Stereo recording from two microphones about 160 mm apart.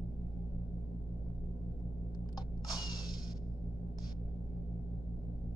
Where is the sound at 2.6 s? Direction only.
25° left (ahead or behind).